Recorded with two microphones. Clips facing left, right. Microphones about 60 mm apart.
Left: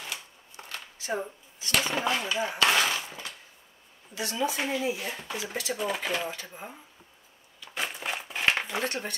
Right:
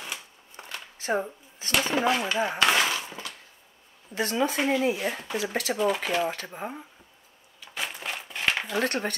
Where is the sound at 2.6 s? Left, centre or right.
Right.